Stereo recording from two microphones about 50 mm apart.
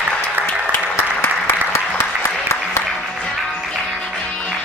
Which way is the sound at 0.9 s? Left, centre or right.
Left.